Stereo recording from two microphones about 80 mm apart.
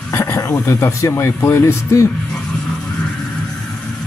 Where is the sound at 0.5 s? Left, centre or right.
Left.